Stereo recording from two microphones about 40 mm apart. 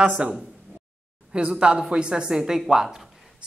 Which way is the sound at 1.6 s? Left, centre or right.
Right.